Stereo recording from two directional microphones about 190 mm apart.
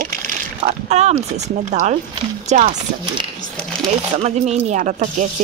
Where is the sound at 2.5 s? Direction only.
40° right (ahead or behind).